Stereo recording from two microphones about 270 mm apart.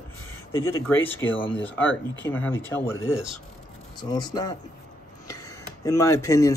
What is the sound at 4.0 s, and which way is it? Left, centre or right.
Speech, centre.